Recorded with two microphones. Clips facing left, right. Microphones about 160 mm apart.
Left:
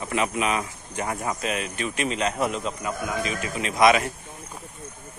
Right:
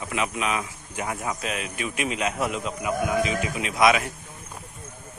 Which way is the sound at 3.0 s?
20° right (ahead or behind).